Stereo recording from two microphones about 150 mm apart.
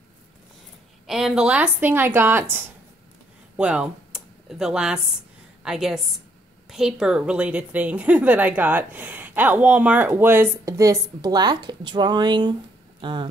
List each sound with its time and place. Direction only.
1.0 s a woman's voice: 5° right (ahead or behind)
3.5 s a woman's voice: 5° right (ahead or behind); by 13.3 s 35° right (ahead or behind)